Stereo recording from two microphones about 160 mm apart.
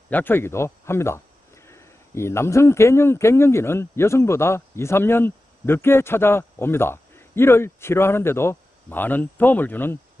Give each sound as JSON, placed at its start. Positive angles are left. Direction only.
{"t": 0.1, "sound": "speech", "side_deg": 10}